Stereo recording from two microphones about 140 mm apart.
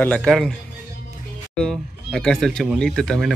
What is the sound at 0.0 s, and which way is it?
Speech, 5° left (ahead or behind).